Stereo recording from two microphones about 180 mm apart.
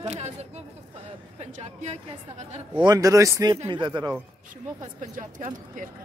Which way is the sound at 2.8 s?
20° right (ahead or behind).